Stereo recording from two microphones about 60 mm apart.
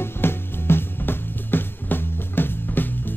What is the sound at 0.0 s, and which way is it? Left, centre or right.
Music, left.